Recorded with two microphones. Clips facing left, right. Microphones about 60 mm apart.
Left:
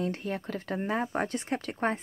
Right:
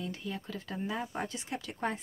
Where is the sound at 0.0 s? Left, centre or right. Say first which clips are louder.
Left 7 dB; left.